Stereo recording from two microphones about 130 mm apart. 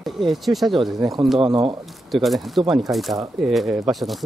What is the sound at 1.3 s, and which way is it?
Speech, 40° right (ahead or behind).